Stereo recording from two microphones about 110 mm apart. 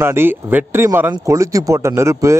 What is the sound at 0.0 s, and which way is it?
Speech, 20° right (ahead or behind).